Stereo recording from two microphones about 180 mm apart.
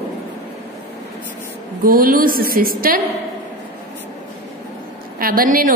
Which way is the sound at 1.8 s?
50° right (ahead or behind).